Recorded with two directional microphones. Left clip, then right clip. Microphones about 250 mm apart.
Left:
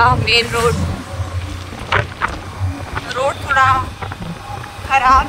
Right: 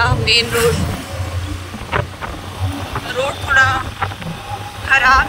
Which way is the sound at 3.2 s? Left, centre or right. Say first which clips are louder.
Even; centre.